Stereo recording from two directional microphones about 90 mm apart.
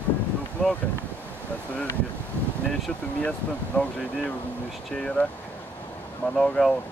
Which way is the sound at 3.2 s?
15° left (ahead or behind).